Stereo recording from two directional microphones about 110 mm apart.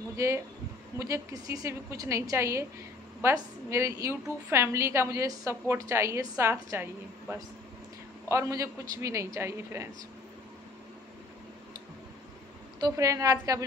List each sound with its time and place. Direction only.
0.9 s a woman's voice: 30° right (ahead or behind)
8.3 s a woman's voice: 30° right (ahead or behind)
12.8 s a woman's voice: 30° right (ahead or behind)